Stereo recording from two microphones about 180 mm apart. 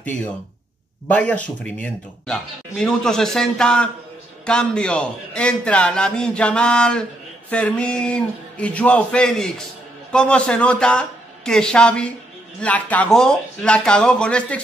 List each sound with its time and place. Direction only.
1.0 s a man's voice: 10° left (ahead or behind)